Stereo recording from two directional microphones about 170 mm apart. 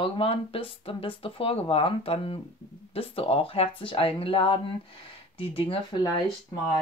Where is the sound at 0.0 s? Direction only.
30° left (ahead or behind).